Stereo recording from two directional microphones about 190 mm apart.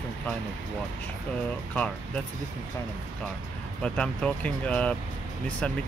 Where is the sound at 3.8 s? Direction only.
5° left (ahead or behind).